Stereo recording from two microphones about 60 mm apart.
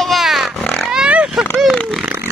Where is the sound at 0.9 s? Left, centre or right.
Centre.